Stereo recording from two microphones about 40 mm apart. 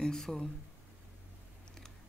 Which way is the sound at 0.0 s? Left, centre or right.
Centre.